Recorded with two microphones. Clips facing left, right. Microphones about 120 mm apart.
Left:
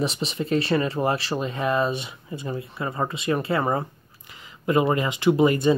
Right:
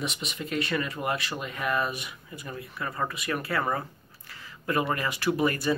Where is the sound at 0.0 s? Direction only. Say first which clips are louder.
Left 8 dB; 30° left (ahead or behind).